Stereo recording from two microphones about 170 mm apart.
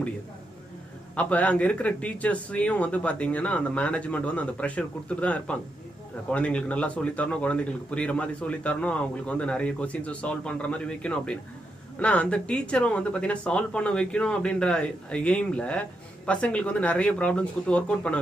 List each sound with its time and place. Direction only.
1.1 s a man's voice: 10° left (ahead or behind)